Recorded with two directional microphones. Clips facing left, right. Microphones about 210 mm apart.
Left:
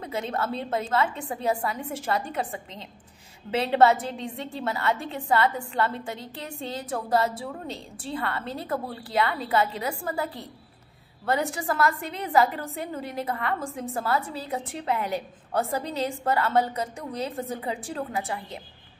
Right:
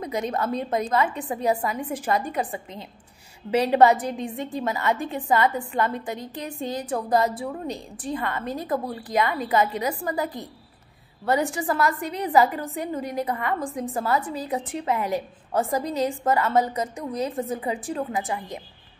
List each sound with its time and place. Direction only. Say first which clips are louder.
0.0 s a woman's voice: right 3 dB; 15° right (ahead or behind)
11.6 s a woman's voice: right 2 dB; 15° right (ahead or behind)